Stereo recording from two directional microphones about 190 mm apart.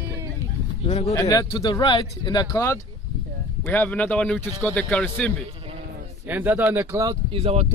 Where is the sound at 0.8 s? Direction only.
40° left (ahead or behind).